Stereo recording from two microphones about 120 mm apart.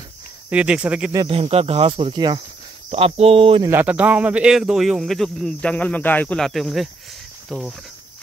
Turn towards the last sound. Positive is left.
turn(degrees=0)  # may be behind; listen again after turning